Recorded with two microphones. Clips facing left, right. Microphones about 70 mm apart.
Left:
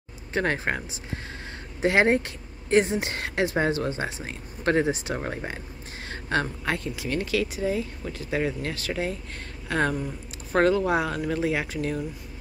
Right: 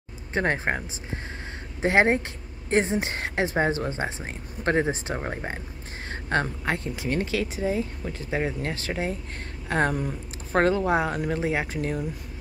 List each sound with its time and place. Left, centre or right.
0.3 s speech: right